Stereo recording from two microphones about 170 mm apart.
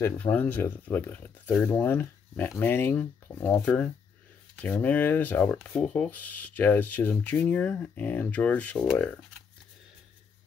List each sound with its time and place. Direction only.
0.0 s speech: 10° left (ahead or behind)